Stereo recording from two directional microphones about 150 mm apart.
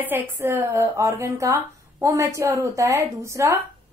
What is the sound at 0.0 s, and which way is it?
A woman's voice, 15° right (ahead or behind).